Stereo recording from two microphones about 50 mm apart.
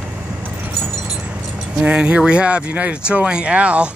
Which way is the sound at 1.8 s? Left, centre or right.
Centre.